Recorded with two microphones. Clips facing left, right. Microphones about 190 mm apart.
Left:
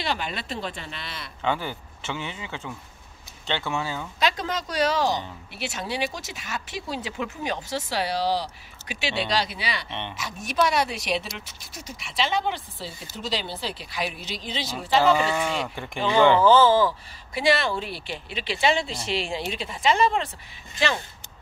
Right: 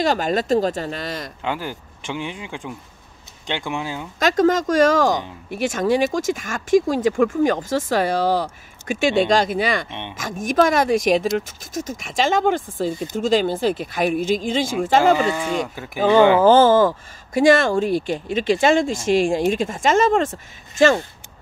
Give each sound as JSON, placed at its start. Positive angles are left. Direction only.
{"t": 0.0, "sound": "speech", "side_deg": -45}
{"t": 1.4, "sound": "speech", "side_deg": -10}
{"t": 4.2, "sound": "speech", "side_deg": -45}
{"t": 9.8, "sound": "speech", "side_deg": -10}
{"t": 10.1, "sound": "speech", "side_deg": -45}
{"t": 15.2, "sound": "speech", "side_deg": 0}
{"t": 16.0, "sound": "speech", "side_deg": -50}